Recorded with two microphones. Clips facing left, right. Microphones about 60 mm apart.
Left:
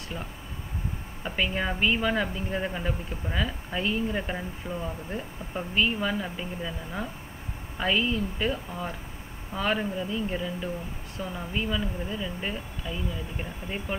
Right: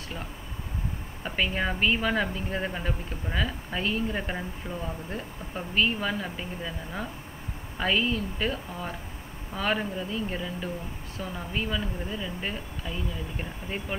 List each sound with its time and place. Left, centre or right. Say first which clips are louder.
1.2 s speech: even; centre